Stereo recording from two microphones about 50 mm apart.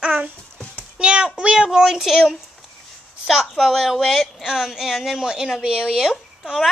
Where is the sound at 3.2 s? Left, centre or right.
Centre.